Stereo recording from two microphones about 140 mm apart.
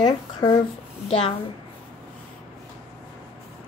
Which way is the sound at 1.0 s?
45° left (ahead or behind).